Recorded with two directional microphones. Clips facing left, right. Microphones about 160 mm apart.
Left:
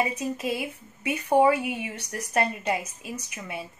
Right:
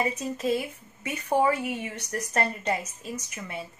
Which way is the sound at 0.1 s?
10° left (ahead or behind).